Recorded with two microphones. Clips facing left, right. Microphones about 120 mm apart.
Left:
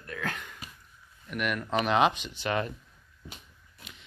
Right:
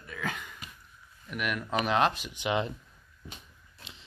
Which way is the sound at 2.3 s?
20° right (ahead or behind).